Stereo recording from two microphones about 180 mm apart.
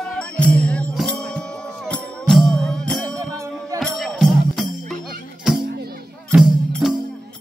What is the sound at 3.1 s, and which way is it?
Music, 20° right (ahead or behind).